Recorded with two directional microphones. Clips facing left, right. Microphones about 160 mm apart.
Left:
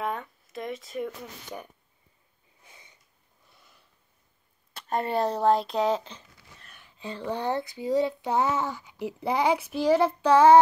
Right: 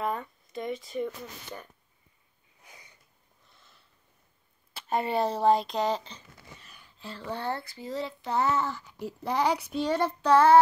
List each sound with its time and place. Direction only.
0.0 s speech: centre (ahead or behind)
2.6 s snort: 25° left (ahead or behind)
4.7 s speech: 5° right (ahead or behind)
6.6 s a sound: centre (ahead or behind)
7.1 s speech: 15° left (ahead or behind)